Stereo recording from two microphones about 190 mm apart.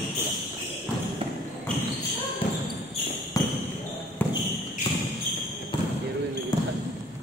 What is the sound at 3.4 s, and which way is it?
Basketball bounce, 20° left (ahead or behind).